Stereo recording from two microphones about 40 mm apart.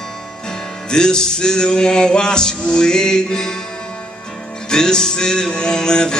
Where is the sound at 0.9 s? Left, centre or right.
Centre.